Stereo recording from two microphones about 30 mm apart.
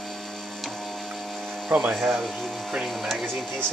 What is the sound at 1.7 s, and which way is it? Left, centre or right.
Speech, right.